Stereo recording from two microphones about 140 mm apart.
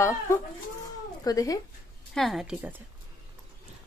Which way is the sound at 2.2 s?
Centre (ahead or behind).